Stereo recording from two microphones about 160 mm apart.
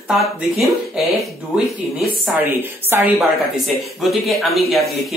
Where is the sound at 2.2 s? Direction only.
10° right (ahead or behind).